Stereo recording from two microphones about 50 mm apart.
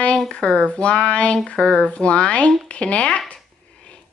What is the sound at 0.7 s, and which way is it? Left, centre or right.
Speech, left.